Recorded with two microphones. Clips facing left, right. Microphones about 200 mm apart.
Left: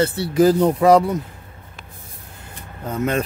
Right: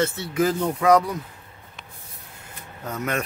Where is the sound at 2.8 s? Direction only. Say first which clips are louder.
Left 6 dB; 30° left (ahead or behind).